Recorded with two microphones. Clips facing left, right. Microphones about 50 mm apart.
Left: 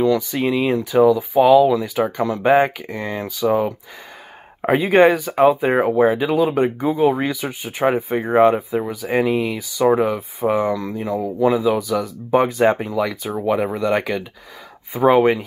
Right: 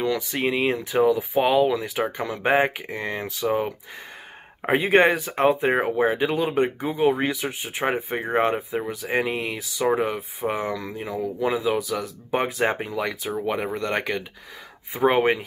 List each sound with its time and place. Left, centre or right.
0.0 s speech: centre
0.5 s speech: right
1.4 s speech: centre